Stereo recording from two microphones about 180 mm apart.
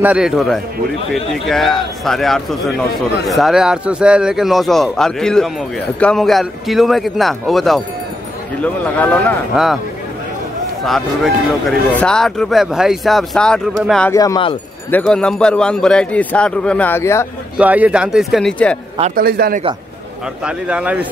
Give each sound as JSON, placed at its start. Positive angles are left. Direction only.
{"t": 0.0, "sound": "a man's voice", "side_deg": -5}
{"t": 8.9, "sound": "speech", "side_deg": 10}
{"t": 11.9, "sound": "a man's voice", "side_deg": 5}
{"t": 14.1, "sound": "speech", "side_deg": 20}
{"t": 14.9, "sound": "a man's voice", "side_deg": 5}
{"t": 17.6, "sound": "a man's voice", "side_deg": -10}
{"t": 19.1, "sound": "a man's voice", "side_deg": -55}
{"t": 20.4, "sound": "a man's voice", "side_deg": -5}